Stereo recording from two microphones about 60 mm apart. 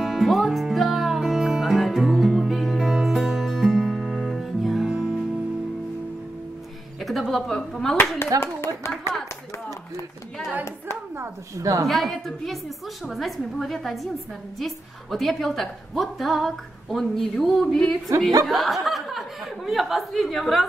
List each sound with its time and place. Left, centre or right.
0.0 s music: centre
7.0 s a sound: centre
8.3 s speech: right
11.1 s speech: right
11.9 s a woman's voice: centre